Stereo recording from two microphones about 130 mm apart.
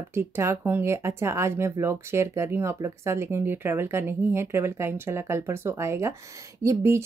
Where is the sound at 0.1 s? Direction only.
20° right (ahead or behind).